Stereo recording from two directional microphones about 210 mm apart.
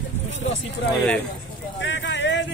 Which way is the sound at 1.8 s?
60° left (ahead or behind).